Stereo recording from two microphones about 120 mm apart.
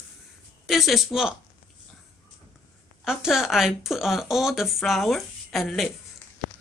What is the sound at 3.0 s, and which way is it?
Speech, 5° right (ahead or behind).